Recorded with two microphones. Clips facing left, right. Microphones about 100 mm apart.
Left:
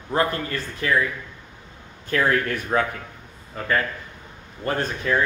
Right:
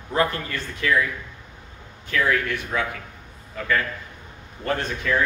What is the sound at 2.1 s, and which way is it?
Speech, 40° left (ahead or behind).